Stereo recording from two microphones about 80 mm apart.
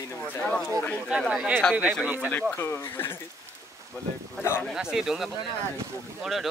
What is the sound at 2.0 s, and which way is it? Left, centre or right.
Speech, right.